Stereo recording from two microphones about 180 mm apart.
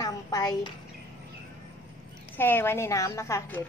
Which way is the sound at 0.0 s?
20° left (ahead or behind).